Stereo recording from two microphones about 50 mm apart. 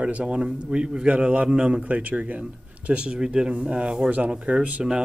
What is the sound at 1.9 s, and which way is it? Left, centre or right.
Speech, right.